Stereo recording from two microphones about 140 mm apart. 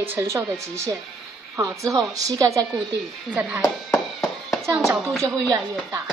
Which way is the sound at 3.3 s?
10° right (ahead or behind).